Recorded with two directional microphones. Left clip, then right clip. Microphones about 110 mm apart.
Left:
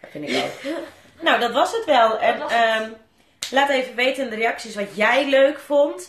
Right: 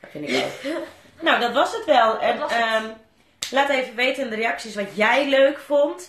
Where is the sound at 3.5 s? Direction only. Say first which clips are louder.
Left 2 dB; 35° left (ahead or behind).